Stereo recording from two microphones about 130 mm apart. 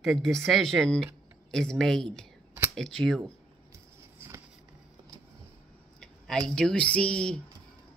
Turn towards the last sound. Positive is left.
turn(degrees=5)  # may be behind; listen again after turning